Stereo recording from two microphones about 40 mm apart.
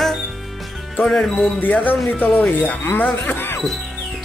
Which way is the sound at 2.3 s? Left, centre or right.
Left.